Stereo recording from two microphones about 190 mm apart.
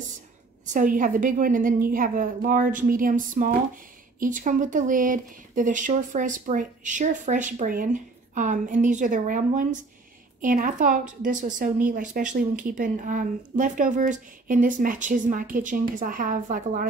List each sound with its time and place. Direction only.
0.7 s a woman's voice: 45° right (ahead or behind)